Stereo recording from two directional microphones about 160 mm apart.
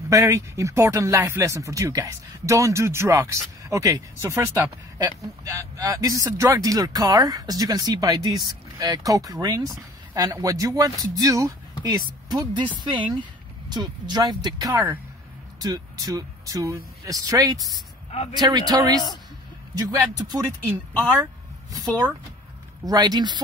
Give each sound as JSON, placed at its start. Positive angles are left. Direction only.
{"t": 0.1, "sound": "speech", "side_deg": -20}
{"t": 20.2, "sound": "speech", "side_deg": -25}
{"t": 22.8, "sound": "speech", "side_deg": -25}